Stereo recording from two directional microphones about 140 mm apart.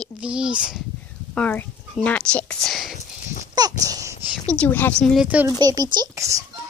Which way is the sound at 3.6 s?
25° right (ahead or behind).